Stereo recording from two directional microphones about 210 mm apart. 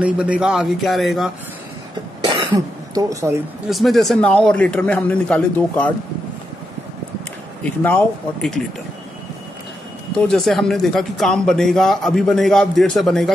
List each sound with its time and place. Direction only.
0.0 s speech: 5° right (ahead or behind)
2.2 s speech: 15° right (ahead or behind)
3.7 s speech: centre (ahead or behind)
7.6 s speech: 5° left (ahead or behind)
10.1 s speech: 5° left (ahead or behind)